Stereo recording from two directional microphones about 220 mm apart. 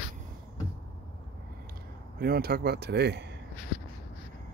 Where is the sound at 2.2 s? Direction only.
45° right (ahead or behind).